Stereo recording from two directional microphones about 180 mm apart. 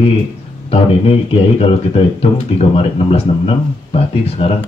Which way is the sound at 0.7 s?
35° left (ahead or behind).